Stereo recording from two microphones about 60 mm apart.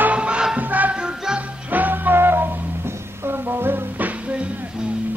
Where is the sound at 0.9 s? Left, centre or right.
Centre.